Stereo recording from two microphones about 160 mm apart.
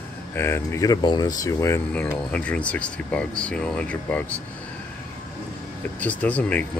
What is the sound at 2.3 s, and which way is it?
Speech, 10° left (ahead or behind).